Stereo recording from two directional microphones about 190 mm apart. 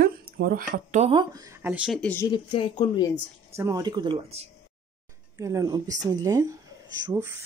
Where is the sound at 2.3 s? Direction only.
30° left (ahead or behind).